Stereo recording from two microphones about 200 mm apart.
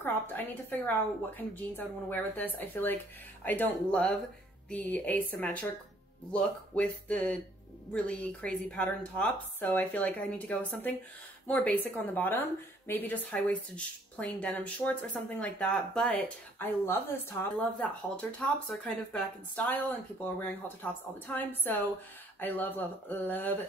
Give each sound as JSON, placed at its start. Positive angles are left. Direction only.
{"t": 0.0, "sound": "a woman's voice", "side_deg": 10}